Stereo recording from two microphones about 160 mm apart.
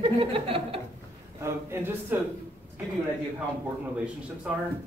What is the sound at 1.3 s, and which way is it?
Speech, 15° right (ahead or behind).